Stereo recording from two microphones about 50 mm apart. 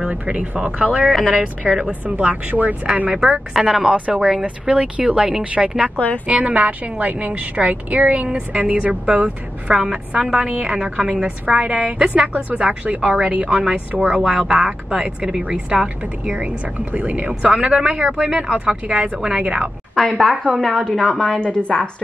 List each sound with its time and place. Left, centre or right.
0.0 s speech: right
3.5 s a woman's voice: centre
20.0 s a woman's voice: centre